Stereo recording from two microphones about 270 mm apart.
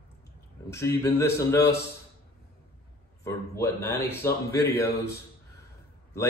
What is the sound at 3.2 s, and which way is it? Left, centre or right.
A man's voice, centre.